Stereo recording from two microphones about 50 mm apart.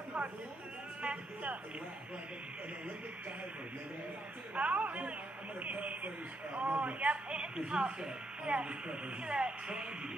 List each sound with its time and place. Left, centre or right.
1.0 s a man's voice: right
4.6 s a man's voice: right